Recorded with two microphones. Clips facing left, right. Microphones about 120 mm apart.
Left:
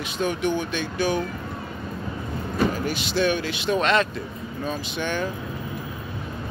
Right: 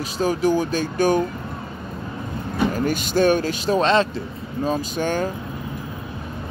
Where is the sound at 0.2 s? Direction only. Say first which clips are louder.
Right 5 dB; 35° right (ahead or behind).